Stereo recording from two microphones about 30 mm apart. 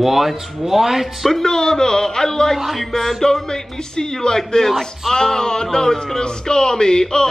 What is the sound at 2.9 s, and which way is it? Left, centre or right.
Speech, centre.